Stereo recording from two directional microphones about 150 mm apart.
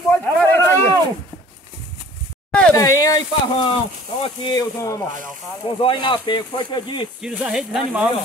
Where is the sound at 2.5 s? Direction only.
10° left (ahead or behind).